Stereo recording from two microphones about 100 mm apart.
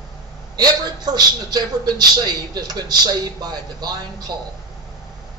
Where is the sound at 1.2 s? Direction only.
45° right (ahead or behind).